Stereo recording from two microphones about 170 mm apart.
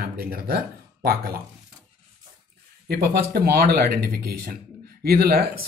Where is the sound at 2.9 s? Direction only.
65° right (ahead or behind).